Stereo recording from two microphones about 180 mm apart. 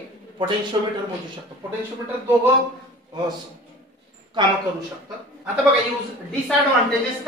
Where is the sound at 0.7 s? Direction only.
30° right (ahead or behind).